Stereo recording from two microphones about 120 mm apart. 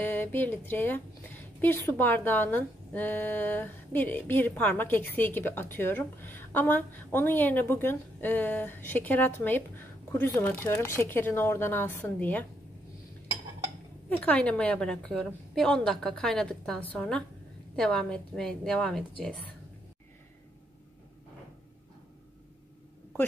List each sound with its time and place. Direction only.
0.0 s a woman's voice: 15° left (ahead or behind)
14.0 s a woman's voice: 10° left (ahead or behind)